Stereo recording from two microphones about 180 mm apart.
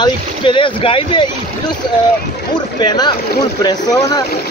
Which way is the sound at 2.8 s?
25° left (ahead or behind).